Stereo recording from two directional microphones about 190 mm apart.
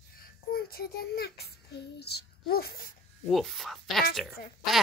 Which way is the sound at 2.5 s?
50° left (ahead or behind).